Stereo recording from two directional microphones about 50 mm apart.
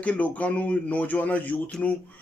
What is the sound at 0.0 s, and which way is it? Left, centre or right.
A man's voice, left.